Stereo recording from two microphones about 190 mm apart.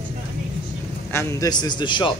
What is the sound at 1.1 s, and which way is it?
A man's voice, 15° left (ahead or behind).